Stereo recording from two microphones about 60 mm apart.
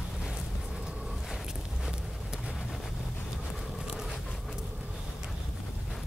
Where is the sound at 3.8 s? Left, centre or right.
Centre.